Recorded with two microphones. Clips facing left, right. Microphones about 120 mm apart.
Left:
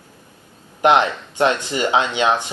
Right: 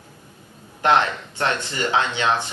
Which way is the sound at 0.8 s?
15° left (ahead or behind).